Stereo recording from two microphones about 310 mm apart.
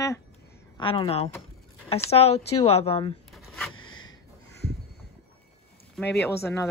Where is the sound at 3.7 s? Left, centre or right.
Left.